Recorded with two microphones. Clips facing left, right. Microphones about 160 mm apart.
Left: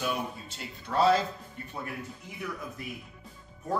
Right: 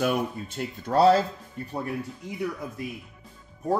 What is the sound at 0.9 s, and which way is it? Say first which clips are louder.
Speech: right 5 dB; 40° right (ahead or behind).